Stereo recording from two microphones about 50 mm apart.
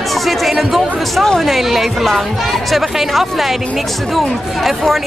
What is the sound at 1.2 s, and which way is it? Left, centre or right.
Speech, centre.